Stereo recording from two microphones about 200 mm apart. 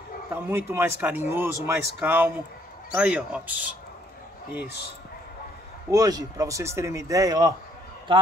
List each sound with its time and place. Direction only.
0.3 s speech: 10° right (ahead or behind)
5.9 s speech: 20° right (ahead or behind)